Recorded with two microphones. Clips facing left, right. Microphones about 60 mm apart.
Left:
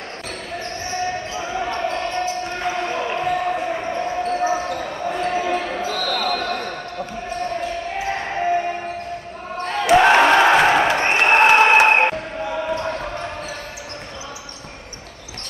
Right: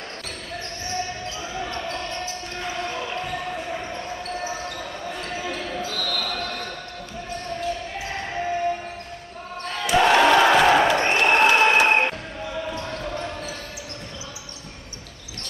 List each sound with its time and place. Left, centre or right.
1.3 s basketball bounce: left
8.0 s basketball bounce: left
9.7 s crowd: left